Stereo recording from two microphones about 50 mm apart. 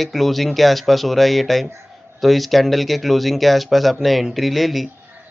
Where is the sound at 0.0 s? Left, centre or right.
Centre.